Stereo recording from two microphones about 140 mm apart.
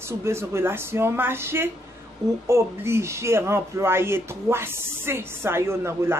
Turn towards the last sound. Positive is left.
turn(degrees=-20)  # may be behind; listen again after turning